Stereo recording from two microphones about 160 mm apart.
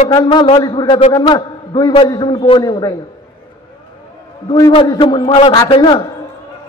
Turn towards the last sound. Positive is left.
turn(degrees=30)  # may be behind; listen again after turning